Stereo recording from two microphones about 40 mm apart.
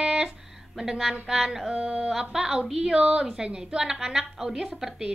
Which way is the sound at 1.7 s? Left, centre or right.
Right.